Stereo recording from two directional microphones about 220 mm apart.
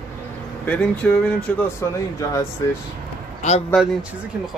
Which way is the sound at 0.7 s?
5° left (ahead or behind).